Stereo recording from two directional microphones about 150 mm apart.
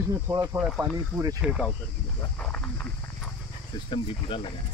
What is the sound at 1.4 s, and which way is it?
Speech, 5° right (ahead or behind).